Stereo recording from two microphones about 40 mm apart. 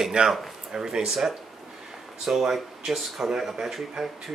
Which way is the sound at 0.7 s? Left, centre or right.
Centre.